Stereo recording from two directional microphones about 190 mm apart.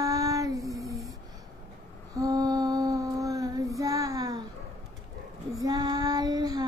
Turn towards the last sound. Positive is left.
turn(degrees=-20)  # may be behind; listen again after turning